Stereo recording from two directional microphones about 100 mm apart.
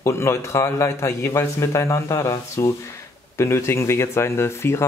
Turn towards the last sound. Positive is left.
turn(degrees=25)  # may be behind; listen again after turning